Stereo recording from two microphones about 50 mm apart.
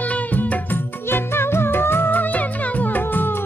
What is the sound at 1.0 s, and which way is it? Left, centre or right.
Music, left.